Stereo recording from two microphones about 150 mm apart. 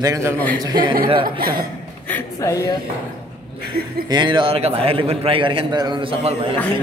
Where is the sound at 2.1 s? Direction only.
20° left (ahead or behind).